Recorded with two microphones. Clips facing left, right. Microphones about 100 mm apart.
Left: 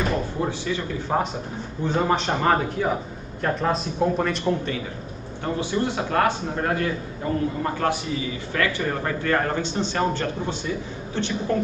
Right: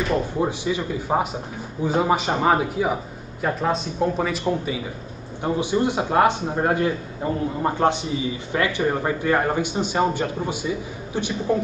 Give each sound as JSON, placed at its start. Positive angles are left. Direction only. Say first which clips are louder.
{"t": 0.4, "sound": "speech", "louder": "right 3 dB", "side_deg": -15}
{"t": 5.4, "sound": "a man's voice", "louder": "right 3 dB", "side_deg": -15}